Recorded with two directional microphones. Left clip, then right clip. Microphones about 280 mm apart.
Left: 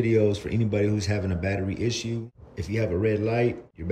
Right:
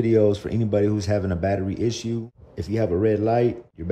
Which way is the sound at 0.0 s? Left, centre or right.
Centre.